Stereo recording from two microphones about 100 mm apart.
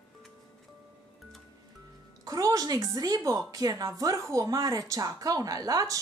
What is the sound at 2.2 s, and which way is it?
A woman's voice, 35° right (ahead or behind).